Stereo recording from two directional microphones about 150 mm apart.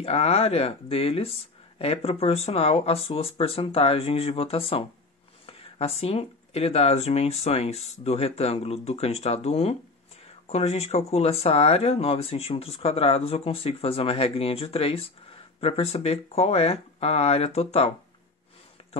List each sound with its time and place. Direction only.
0.0 s speech: 40° left (ahead or behind)